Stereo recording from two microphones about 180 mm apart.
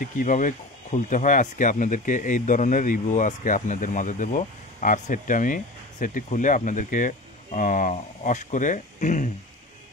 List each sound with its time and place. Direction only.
0.0 s speech: 45° left (ahead or behind)